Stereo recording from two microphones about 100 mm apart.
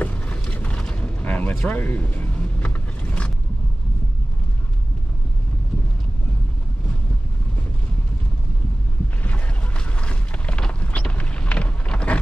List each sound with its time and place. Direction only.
0.0 s vehicle: 15° left (ahead or behind)
9.2 s boat: 15° left (ahead or behind)